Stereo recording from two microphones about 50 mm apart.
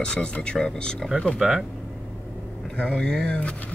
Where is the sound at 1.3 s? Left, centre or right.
Centre.